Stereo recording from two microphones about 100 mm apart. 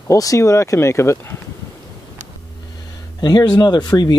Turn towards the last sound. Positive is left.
turn(degrees=45)  # may be behind; listen again after turning